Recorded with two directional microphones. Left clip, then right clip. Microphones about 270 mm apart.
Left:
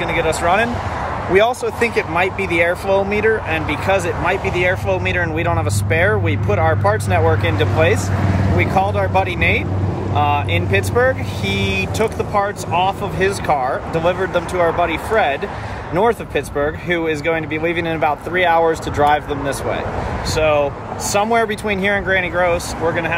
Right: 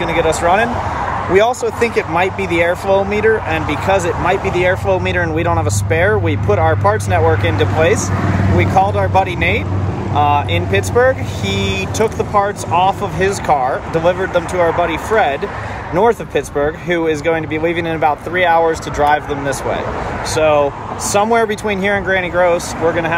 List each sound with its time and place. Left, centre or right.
0.2 s speech: centre